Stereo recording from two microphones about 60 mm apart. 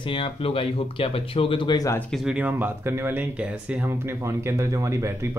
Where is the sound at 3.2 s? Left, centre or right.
Right.